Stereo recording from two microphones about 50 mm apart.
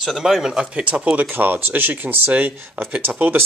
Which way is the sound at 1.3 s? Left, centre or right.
Right.